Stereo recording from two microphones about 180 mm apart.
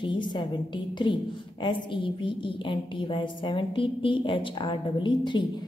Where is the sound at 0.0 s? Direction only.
25° left (ahead or behind).